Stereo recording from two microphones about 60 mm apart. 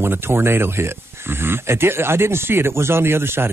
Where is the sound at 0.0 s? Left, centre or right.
Right.